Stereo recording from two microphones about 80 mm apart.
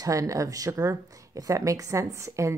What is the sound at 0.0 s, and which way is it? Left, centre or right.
Speech, right.